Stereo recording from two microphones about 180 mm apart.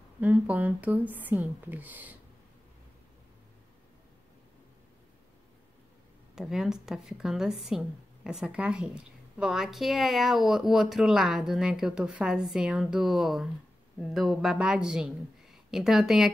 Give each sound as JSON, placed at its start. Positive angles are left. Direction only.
{"t": 0.2, "sound": "speech", "side_deg": -10}
{"t": 6.3, "sound": "speech", "side_deg": -5}